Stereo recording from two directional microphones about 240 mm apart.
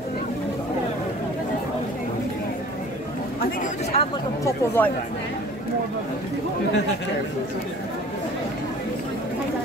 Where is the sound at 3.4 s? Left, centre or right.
Left.